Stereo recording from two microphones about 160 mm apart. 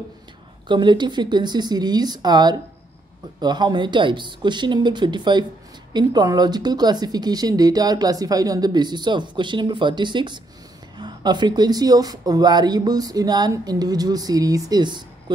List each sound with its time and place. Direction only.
0.7 s speech: 30° right (ahead or behind)